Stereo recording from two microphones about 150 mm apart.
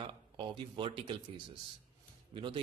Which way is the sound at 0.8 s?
35° right (ahead or behind).